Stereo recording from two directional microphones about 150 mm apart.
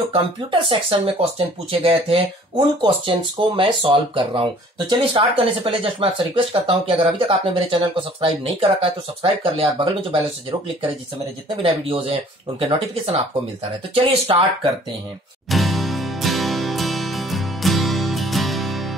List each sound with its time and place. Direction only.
0.1 s speech: 35° right (ahead or behind)
11.6 s speech: 40° right (ahead or behind)
15.5 s music: centre (ahead or behind)